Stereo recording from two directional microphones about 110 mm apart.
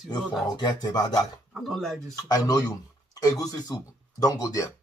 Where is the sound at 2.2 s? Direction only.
35° left (ahead or behind).